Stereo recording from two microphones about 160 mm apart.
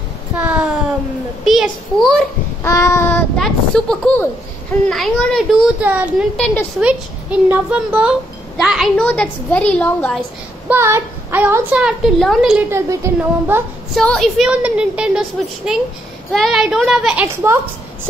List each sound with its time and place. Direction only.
0.4 s a sound: 10° right (ahead or behind)
1.4 s speech: centre (ahead or behind)
2.6 s a woman's voice: 15° left (ahead or behind)
3.3 s speech: 5° left (ahead or behind)
5.8 s a woman's voice: 10° right (ahead or behind)
6.3 s speech: 5° left (ahead or behind)
6.8 s a woman's voice: 10° right (ahead or behind)
8.9 s a woman's voice: 10° left (ahead or behind)
10.7 s a woman's voice: 15° right (ahead or behind)
12.7 s a woman's voice: 15° right (ahead or behind)
13.9 s speech: centre (ahead or behind)